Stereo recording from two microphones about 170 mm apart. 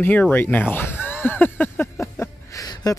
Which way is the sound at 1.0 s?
10° left (ahead or behind).